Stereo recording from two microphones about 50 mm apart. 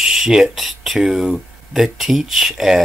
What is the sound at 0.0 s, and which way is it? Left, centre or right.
Speech, centre.